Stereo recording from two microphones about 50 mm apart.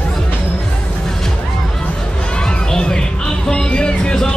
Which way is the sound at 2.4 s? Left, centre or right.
Centre.